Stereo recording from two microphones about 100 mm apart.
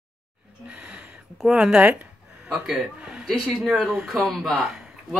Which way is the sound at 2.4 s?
10° right (ahead or behind).